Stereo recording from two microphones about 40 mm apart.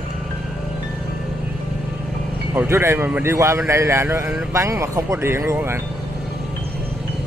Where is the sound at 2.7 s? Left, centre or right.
Right.